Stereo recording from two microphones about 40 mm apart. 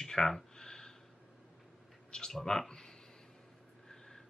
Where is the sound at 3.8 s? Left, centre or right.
Centre.